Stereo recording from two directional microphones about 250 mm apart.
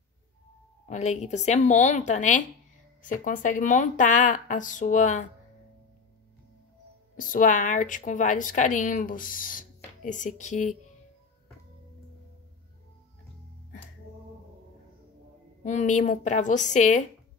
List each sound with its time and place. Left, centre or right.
0.8 s a woman's voice: left
7.2 s a woman's voice: left
15.6 s speech: left